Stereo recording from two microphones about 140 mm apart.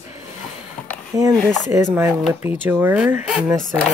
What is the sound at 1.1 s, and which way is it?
Speech, 25° right (ahead or behind).